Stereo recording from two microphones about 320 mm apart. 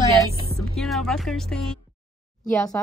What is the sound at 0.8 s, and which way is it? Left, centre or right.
Speech, centre.